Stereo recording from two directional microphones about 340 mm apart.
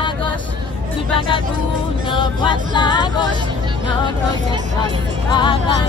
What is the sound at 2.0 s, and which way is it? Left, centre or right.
Music, centre.